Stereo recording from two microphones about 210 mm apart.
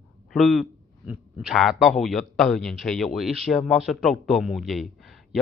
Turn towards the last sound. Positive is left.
turn(degrees=0)  # may be behind; listen again after turning